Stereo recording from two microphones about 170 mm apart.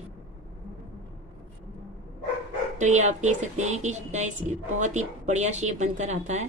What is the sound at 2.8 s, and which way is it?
A woman's voice, 45° right (ahead or behind).